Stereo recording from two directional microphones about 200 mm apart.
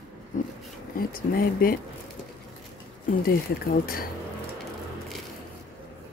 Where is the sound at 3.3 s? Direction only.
50° left (ahead or behind).